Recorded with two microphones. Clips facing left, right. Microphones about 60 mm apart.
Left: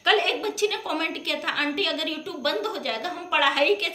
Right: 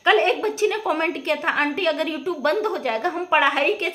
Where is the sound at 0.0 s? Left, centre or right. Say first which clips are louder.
Right 5 dB; right.